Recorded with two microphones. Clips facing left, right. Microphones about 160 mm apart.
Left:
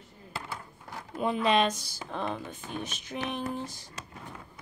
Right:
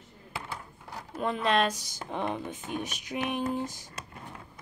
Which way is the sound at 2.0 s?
15° right (ahead or behind).